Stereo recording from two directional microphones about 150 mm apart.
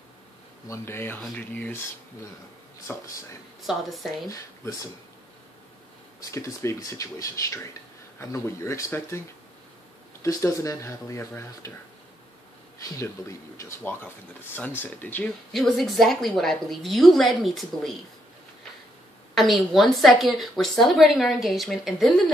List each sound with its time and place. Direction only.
0.7 s speech: 15° left (ahead or behind)
2.9 s speech: 15° left (ahead or behind)
3.6 s a woman's voice: centre (ahead or behind)
6.3 s speech: 20° left (ahead or behind)
10.2 s speech: 20° left (ahead or behind)
13.6 s speech: 15° left (ahead or behind)
15.5 s a woman's voice: centre (ahead or behind)
19.3 s a woman's voice: centre (ahead or behind)